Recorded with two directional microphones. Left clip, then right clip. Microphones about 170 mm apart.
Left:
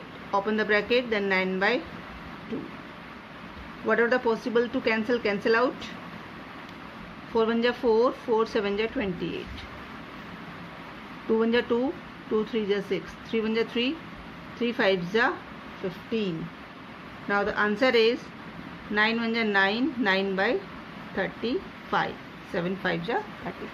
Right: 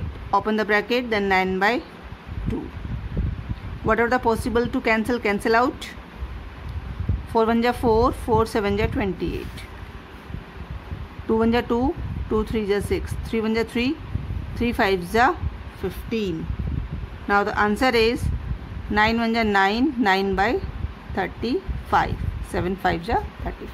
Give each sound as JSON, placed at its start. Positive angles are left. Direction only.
{"t": 0.3, "sound": "speech", "side_deg": -60}
{"t": 3.9, "sound": "speech", "side_deg": -55}
{"t": 7.3, "sound": "speech", "side_deg": -55}
{"t": 11.3, "sound": "speech", "side_deg": -50}
{"t": 17.3, "sound": "speech", "side_deg": -60}